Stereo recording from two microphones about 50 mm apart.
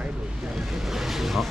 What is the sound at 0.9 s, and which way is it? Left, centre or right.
Ocean, centre.